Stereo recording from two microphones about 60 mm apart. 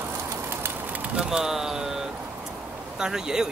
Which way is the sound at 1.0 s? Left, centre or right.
Centre.